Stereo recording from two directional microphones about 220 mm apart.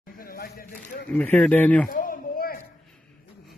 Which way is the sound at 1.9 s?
40° left (ahead or behind).